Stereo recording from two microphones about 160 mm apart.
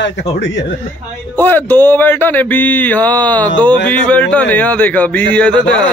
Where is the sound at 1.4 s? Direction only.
10° left (ahead or behind).